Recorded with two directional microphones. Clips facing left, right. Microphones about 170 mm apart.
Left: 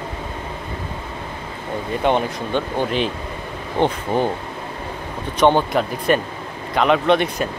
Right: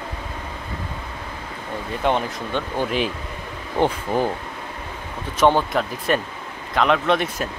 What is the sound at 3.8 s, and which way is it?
Speech, 25° left (ahead or behind).